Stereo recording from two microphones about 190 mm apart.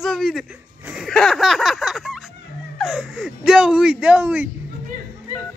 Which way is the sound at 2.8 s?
Centre (ahead or behind).